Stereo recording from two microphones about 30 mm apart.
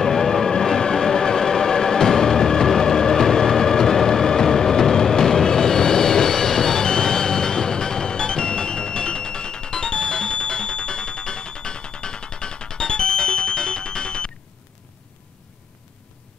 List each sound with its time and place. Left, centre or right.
0.0 s train: centre; by 14.3 s left